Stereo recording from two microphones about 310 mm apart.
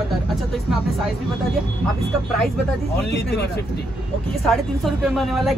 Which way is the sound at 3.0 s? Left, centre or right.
Left.